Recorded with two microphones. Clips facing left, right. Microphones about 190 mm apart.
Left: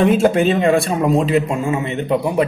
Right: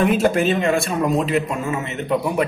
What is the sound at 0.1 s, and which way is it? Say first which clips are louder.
A man's voice: left 3 dB; 30° left (ahead or behind).